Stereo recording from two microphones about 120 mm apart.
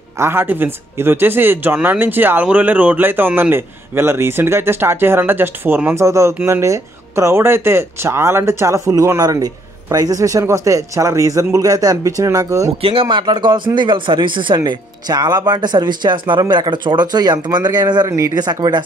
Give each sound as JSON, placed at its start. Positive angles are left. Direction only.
{"t": 0.2, "sound": "speech", "side_deg": -20}
{"t": 12.8, "sound": "speech", "side_deg": -45}